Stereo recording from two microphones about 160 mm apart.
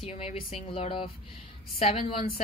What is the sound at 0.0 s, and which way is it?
A woman's voice, 40° left (ahead or behind).